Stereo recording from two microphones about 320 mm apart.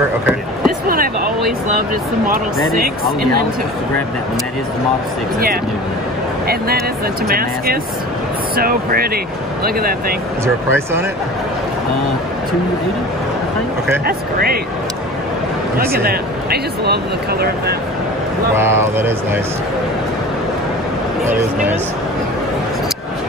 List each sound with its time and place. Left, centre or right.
0.8 s a sound: right
6.4 s speech: right
10.4 s speech: centre
14.0 s speech: right
15.9 s speech: right
18.5 s speech: centre
21.3 s speech: centre